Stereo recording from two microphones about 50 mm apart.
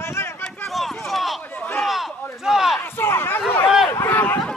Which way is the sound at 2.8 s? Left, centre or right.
Left.